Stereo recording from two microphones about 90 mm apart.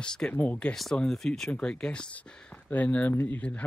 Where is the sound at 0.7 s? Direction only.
5° left (ahead or behind).